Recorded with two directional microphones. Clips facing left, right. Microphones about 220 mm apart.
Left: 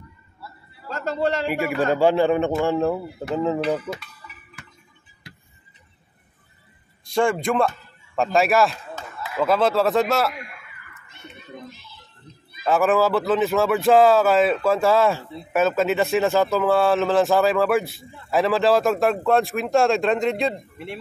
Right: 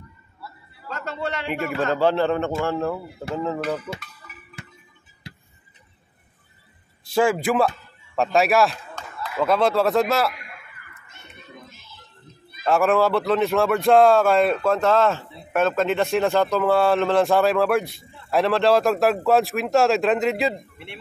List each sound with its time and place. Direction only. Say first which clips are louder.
0.8 s a man's voice: left 6 dB; 35° left (ahead or behind)
1.9 s speech: left 2 dB; 10° left (ahead or behind)
7.1 s a man's voice: right 1 dB; 5° right (ahead or behind)
12.6 s speech: even; centre (ahead or behind)
20.7 s speech: left 7 dB; 40° left (ahead or behind)